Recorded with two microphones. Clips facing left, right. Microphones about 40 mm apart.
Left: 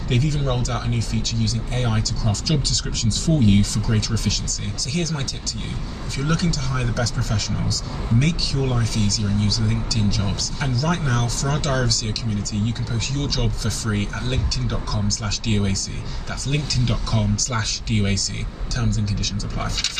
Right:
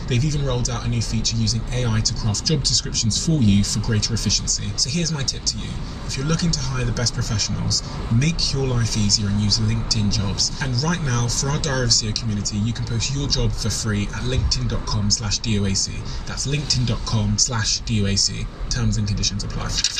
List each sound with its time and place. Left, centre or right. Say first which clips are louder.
0.1 s speech: left 1 dB; left